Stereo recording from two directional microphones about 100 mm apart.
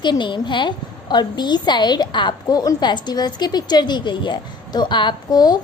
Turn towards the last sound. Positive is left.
turn(degrees=45)  # may be behind; listen again after turning